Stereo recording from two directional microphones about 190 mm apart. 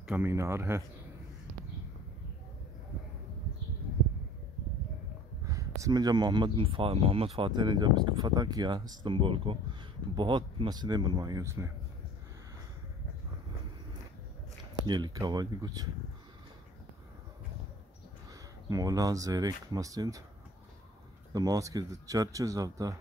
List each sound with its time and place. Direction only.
0.0 s speech: 10° right (ahead or behind)
5.4 s speech: 15° right (ahead or behind)
14.9 s speech: 20° right (ahead or behind)
18.7 s speech: 20° right (ahead or behind)
21.3 s speech: 20° right (ahead or behind)